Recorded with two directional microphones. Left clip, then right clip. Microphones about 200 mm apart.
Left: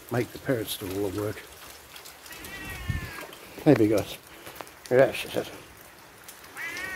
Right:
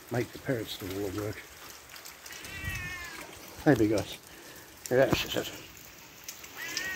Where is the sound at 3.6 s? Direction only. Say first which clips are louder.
Left 4 dB; 15° left (ahead or behind).